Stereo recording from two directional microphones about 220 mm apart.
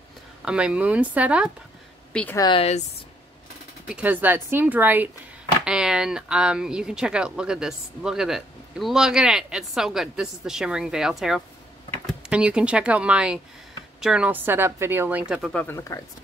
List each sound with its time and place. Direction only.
0.5 s speech: 5° right (ahead or behind)
2.1 s speech: 10° left (ahead or behind)
2.4 s speech: 25° left (ahead or behind)
3.9 s speech: 10° right (ahead or behind); by 16.0 s 10° left (ahead or behind)